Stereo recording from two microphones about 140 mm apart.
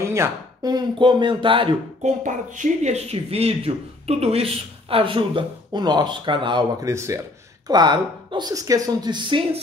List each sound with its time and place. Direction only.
0.0 s speech: 20° right (ahead or behind); by 1.8 s 35° right (ahead or behind)
2.0 s speech: 60° right (ahead or behind); by 6.9 s 35° right (ahead or behind)
6.9 s speech: 20° right (ahead or behind)
7.6 s speech: 30° right (ahead or behind)